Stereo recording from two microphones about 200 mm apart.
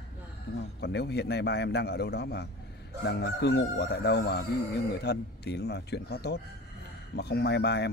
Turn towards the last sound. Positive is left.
turn(degrees=55)  # may be behind; listen again after turning